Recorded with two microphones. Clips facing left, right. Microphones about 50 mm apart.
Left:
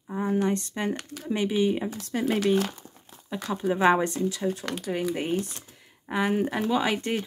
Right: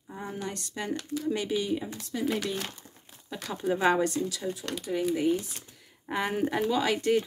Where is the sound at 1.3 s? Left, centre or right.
Left.